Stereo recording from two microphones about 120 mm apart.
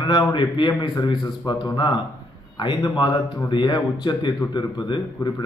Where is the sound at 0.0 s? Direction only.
40° left (ahead or behind).